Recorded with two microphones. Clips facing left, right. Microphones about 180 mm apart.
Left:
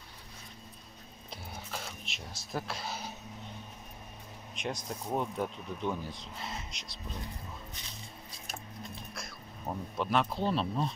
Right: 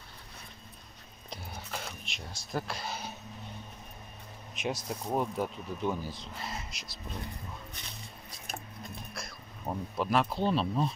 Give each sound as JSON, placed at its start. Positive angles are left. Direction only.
{"t": 1.3, "sound": "a sound", "side_deg": 0}
{"t": 4.6, "sound": "speech", "side_deg": -5}
{"t": 7.8, "sound": "music", "side_deg": -55}
{"t": 9.1, "sound": "speech", "side_deg": 0}